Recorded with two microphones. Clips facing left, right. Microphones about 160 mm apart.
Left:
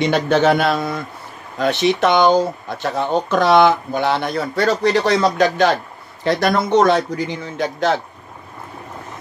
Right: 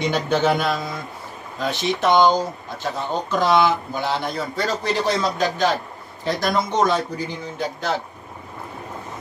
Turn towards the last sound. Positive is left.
turn(degrees=85)